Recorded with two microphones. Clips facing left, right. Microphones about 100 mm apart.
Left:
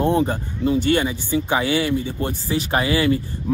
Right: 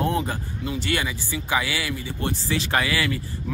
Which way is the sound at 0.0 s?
25° left (ahead or behind).